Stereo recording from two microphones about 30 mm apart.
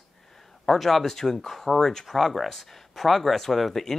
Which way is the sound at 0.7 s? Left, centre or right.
Centre.